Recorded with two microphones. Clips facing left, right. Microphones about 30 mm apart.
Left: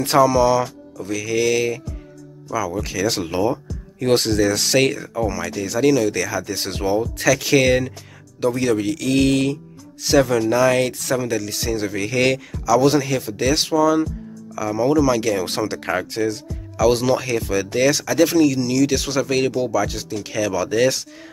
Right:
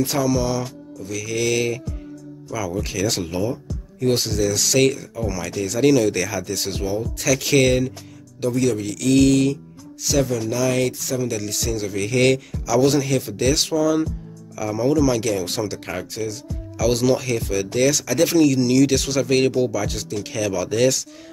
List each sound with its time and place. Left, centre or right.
0.3 s speech: centre
3.3 s speech: left
4.0 s speech: left
4.7 s speech: centre
5.4 s speech: centre
6.5 s speech: centre
7.4 s speech: centre
8.5 s speech: left
12.0 s speech: centre
15.4 s speech: left; by 19.0 s centre
19.0 s speech: centre
19.3 s speech: centre